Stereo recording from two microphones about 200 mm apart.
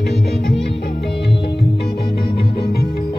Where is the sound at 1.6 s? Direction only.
25° left (ahead or behind).